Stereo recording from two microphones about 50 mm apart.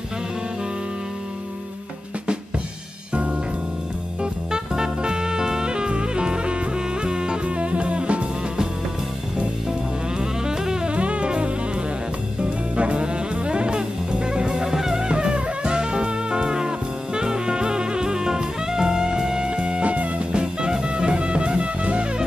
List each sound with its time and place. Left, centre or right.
3.1 s music: right
9.7 s music: centre
10.9 s music: right